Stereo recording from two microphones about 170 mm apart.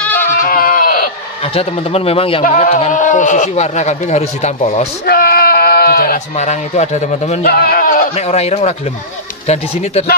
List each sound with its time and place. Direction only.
0.0 s goat: 10° left (ahead or behind)
0.4 s goat: 55° left (ahead or behind)
1.4 s a man's voice: 35° left (ahead or behind)
2.4 s speech: 50° left (ahead or behind)
5.0 s bleat: 65° left (ahead or behind)
6.1 s a man's voice: 40° left (ahead or behind)
7.4 s speech: 65° left (ahead or behind)
8.1 s a man's voice: 40° left (ahead or behind)